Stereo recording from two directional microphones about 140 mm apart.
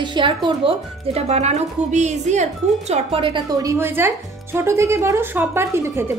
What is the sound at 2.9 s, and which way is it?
Speech, 40° right (ahead or behind).